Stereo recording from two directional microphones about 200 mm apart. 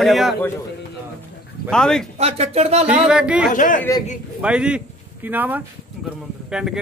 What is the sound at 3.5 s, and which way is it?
Speech, 40° left (ahead or behind).